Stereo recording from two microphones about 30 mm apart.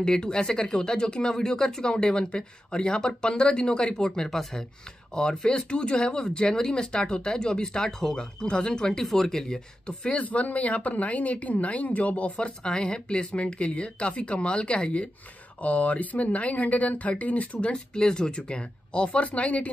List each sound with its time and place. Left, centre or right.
0.0 s speech: left
5.1 s speech: left; by 8.2 s centre
8.5 s speech: left
9.0 s speech: centre
10.2 s speech: left
12.4 s speech: left
15.6 s speech: left
17.7 s speech: left
19.0 s speech: left